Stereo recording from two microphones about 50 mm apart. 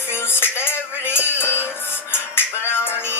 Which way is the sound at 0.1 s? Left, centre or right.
Left.